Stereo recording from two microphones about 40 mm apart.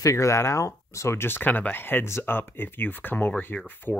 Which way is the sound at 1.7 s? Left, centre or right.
Left.